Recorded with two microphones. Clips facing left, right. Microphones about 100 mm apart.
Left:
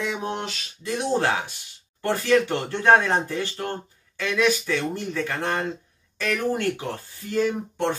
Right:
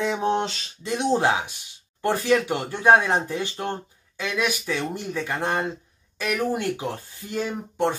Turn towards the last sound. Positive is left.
turn(degrees=-15)  # may be behind; listen again after turning